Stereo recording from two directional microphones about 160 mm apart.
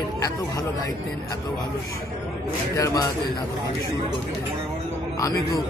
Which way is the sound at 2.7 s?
20° left (ahead or behind).